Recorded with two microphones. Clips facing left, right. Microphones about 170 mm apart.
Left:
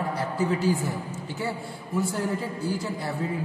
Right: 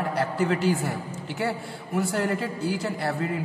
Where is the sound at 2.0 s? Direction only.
80° right.